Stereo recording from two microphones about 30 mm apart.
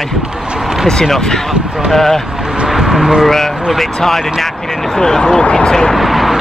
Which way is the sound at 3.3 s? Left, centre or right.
Centre.